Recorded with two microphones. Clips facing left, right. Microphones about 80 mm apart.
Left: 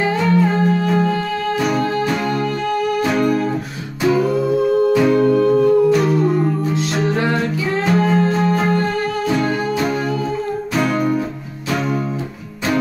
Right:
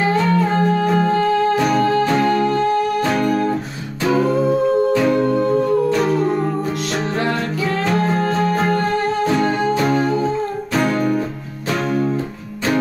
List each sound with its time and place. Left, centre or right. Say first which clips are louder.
0.3 s music: left 1 dB; right
3.1 s music: left 1 dB; centre
4.1 s music: right 1 dB; right
4.9 s music: left 2 dB; centre
5.2 s music: left 3 dB; centre
7.2 s music: left 1 dB; left
8.5 s music: even; right
10.8 s music: even; centre